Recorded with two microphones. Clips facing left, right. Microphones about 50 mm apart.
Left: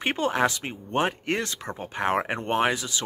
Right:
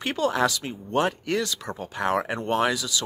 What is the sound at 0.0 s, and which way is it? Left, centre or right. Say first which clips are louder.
Speech: even; left.